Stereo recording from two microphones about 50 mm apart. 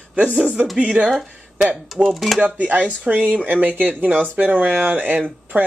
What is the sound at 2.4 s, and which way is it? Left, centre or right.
Speech, right.